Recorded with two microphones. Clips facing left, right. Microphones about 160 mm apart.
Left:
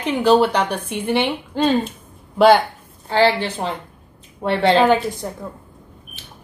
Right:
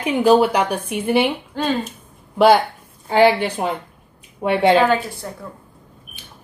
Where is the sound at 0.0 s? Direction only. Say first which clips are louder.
Right 1 dB; 10° right (ahead or behind).